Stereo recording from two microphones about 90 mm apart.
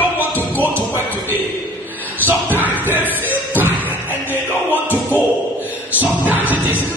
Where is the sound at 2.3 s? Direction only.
20° right (ahead or behind).